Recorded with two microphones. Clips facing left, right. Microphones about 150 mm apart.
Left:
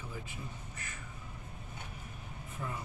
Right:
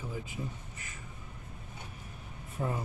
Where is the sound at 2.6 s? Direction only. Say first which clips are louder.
Right 7 dB; 40° right (ahead or behind).